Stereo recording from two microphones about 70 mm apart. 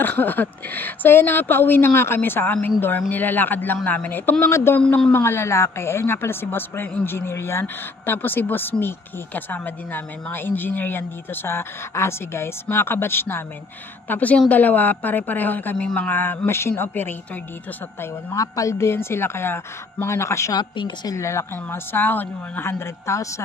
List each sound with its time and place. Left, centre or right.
0.0 s a woman's voice: left
4.5 s speech: left
4.7 s speech: centre
5.1 s speech: left
14.0 s a woman's voice: left
18.3 s speech: left